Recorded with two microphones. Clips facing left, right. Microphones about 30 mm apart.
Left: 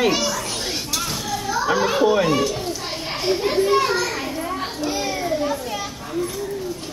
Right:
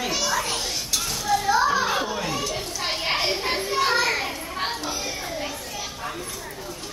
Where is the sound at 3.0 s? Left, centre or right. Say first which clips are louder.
Left 3 dB; right.